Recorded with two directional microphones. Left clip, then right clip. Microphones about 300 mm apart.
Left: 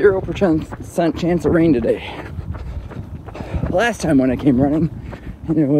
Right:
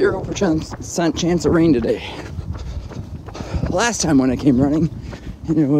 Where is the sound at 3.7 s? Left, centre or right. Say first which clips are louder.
Left 1 dB; centre.